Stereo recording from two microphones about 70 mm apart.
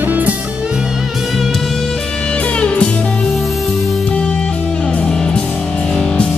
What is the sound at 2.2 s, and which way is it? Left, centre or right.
Music, centre.